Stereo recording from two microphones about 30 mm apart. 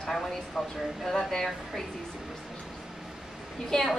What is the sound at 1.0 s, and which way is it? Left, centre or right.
Speech, centre.